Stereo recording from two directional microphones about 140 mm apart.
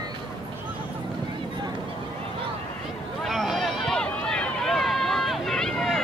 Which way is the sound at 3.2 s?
Centre (ahead or behind).